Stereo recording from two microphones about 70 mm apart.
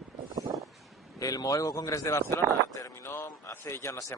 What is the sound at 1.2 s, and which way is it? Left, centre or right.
Speech, left.